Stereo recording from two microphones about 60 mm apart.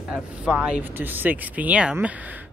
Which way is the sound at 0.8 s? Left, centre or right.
Right.